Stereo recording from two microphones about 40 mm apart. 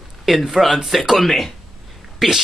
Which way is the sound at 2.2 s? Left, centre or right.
Centre.